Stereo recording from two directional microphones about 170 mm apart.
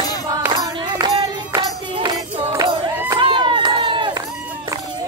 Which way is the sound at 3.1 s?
30° right (ahead or behind).